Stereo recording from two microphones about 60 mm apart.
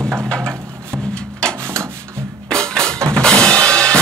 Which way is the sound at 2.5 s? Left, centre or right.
Centre.